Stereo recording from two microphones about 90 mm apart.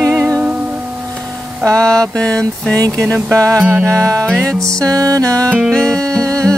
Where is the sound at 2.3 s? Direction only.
35° right (ahead or behind).